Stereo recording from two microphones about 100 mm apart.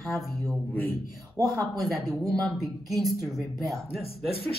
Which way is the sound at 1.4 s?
35° right (ahead or behind).